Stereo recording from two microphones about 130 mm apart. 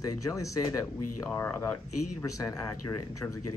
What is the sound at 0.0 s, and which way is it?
Speech, 25° left (ahead or behind).